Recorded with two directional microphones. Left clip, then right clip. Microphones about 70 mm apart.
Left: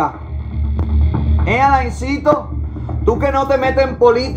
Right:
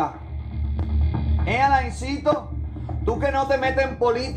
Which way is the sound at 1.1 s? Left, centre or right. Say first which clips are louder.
Left 7 dB; left.